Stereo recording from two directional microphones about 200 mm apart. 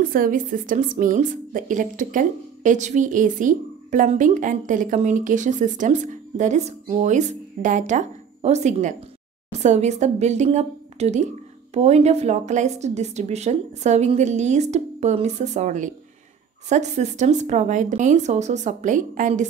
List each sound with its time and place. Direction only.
0.0 s a woman's voice: 45° right (ahead or behind)